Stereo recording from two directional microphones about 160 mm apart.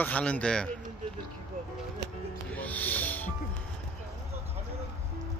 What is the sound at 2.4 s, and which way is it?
Music, 10° left (ahead or behind).